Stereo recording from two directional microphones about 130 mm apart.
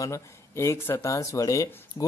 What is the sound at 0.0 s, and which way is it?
Speech, 25° left (ahead or behind).